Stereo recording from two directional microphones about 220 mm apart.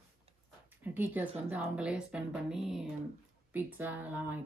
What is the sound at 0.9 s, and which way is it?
Speech, 10° right (ahead or behind).